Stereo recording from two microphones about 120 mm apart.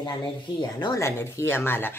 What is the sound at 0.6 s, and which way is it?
Speech, 40° left (ahead or behind).